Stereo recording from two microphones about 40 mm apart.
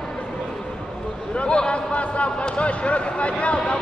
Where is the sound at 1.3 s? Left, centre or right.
Left.